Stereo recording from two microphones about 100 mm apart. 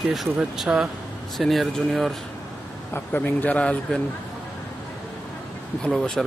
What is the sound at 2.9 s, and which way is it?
Speech, 20° left (ahead or behind).